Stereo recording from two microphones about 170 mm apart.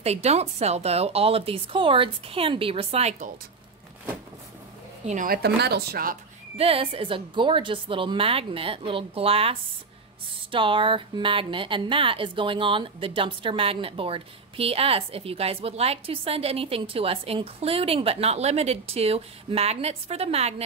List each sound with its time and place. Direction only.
0.0 s speech: 40° right (ahead or behind)
5.0 s speech: 50° right (ahead or behind)
5.6 s speech: 70° right (ahead or behind)
6.5 s speech: 35° right (ahead or behind)